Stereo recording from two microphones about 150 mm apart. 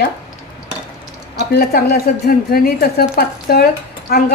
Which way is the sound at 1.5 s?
90° left.